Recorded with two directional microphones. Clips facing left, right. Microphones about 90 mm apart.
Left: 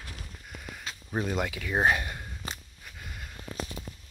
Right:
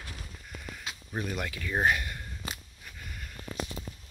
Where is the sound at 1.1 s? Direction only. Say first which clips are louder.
Left 5 dB; 25° left (ahead or behind).